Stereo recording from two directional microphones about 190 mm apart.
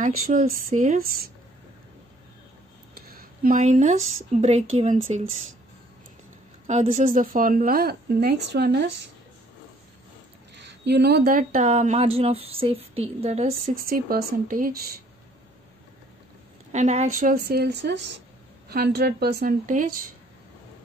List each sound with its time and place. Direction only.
0.0 s a woman's voice: 45° right (ahead or behind)
3.1 s a sound: 50° right (ahead or behind)
4.3 s speech: 35° right (ahead or behind)
6.7 s a woman's voice: 40° right (ahead or behind); by 8.9 s 60° right (ahead or behind)
10.6 s speech: 65° right (ahead or behind); by 13.6 s 35° right (ahead or behind)
13.7 s a woman's voice: 50° right (ahead or behind)
16.7 s a woman's voice: 35° right (ahead or behind)